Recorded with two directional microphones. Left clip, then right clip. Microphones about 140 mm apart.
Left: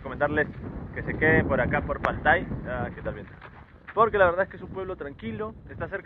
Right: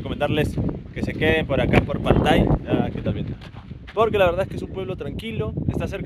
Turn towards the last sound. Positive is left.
turn(degrees=-30)  # may be behind; listen again after turning